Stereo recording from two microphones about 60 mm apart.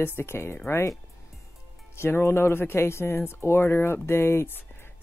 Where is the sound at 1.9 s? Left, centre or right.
Left.